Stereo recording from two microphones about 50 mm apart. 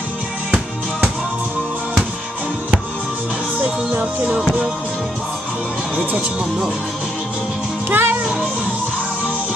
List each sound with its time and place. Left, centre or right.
3.9 s music: right
7.9 s music: right